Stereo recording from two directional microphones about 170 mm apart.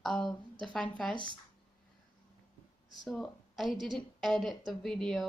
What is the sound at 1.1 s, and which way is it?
Speech, 25° left (ahead or behind).